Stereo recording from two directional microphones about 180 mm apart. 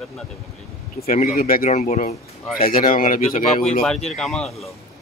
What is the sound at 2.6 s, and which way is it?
Speech, 50° left (ahead or behind).